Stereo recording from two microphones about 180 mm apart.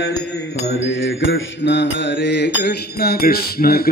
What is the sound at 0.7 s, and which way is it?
Mantra, 90° left.